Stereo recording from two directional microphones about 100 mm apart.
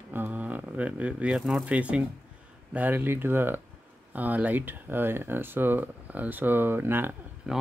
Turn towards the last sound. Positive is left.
turn(degrees=-5)  # may be behind; listen again after turning